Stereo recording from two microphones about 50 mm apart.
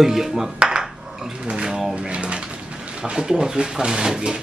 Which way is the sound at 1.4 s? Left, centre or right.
Centre.